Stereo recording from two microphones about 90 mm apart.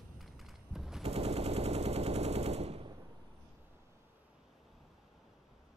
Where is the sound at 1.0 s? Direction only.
90° right.